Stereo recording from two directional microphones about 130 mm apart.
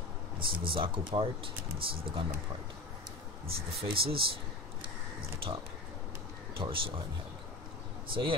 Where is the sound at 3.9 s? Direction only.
45° right (ahead or behind).